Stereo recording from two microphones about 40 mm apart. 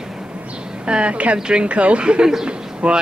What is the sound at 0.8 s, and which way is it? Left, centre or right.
Speech, right.